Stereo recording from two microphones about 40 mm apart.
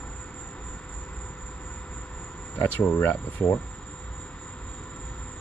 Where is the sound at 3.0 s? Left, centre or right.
Left.